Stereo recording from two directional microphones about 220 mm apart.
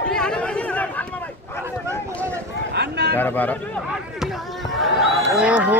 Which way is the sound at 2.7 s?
50° right (ahead or behind).